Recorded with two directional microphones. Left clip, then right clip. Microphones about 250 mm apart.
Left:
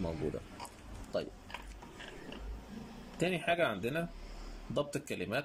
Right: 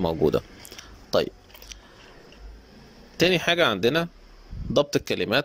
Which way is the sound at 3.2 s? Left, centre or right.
Right.